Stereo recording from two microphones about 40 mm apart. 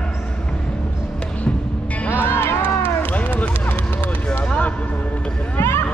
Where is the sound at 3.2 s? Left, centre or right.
Left.